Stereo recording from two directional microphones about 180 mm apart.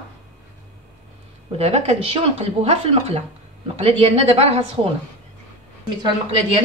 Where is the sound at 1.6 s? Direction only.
35° right (ahead or behind).